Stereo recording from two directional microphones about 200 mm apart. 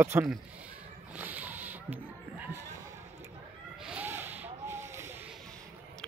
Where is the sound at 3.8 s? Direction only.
10° right (ahead or behind).